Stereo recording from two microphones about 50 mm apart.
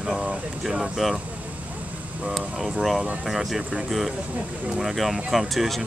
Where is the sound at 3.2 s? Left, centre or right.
Centre.